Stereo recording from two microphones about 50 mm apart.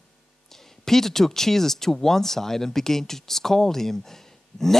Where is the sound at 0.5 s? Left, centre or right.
Centre.